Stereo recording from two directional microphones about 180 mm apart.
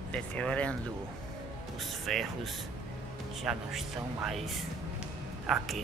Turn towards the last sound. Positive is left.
turn(degrees=0)  # may be behind; listen again after turning